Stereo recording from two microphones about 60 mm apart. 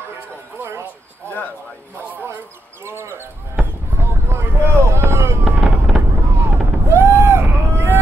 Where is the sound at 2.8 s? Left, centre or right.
Right.